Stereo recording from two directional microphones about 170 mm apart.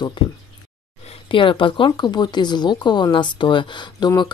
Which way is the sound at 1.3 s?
30° left (ahead or behind).